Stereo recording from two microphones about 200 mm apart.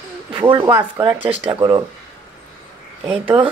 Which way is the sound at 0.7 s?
10° right (ahead or behind).